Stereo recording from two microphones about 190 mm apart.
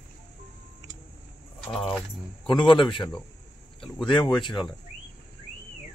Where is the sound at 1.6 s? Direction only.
Centre (ahead or behind).